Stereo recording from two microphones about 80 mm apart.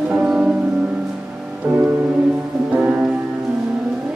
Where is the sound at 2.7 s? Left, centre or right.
Centre.